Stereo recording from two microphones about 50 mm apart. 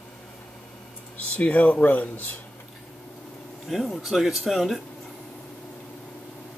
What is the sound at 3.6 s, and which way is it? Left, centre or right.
Speech, centre.